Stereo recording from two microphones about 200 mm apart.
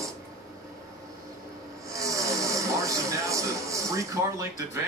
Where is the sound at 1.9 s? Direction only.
15° right (ahead or behind).